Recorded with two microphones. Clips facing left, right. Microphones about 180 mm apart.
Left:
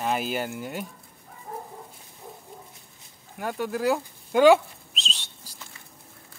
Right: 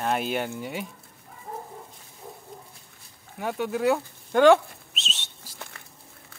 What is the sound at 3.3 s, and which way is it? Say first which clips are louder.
Speech: right 1 dB; centre (ahead or behind).